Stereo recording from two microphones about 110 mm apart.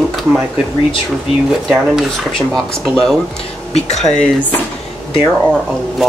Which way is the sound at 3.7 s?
90° left.